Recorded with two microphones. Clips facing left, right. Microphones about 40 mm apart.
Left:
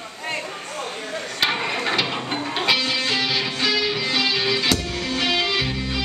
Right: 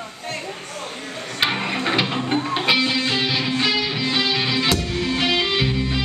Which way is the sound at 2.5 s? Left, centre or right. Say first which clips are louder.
Even; centre.